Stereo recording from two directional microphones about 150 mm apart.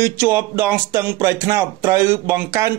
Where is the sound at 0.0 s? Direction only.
15° right (ahead or behind).